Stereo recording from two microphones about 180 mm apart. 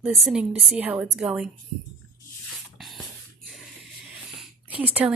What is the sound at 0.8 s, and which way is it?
Speech, 10° right (ahead or behind).